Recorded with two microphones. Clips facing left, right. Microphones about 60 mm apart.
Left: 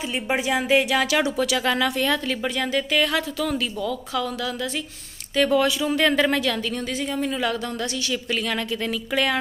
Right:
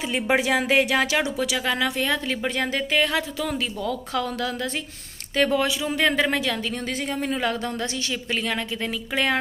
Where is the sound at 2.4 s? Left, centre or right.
Right.